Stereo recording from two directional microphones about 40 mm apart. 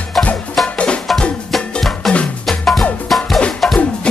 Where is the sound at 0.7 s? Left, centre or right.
Left.